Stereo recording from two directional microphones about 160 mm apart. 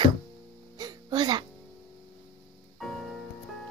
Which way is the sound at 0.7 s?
25° right (ahead or behind).